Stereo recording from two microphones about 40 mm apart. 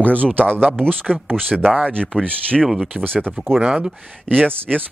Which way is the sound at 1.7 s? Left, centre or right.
Right.